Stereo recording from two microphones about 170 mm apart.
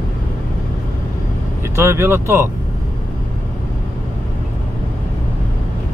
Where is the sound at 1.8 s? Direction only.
15° right (ahead or behind).